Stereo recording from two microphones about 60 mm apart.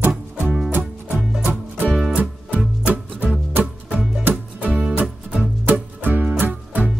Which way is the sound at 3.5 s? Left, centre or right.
Right.